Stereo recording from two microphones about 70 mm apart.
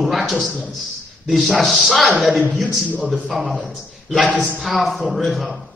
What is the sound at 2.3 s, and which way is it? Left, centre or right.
Speech, right.